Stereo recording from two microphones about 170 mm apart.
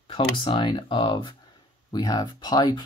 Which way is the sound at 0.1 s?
30° left (ahead or behind).